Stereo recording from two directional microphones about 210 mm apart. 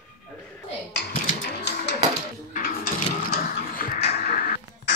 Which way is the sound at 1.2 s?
50° left (ahead or behind).